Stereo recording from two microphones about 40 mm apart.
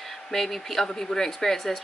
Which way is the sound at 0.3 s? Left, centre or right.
Centre.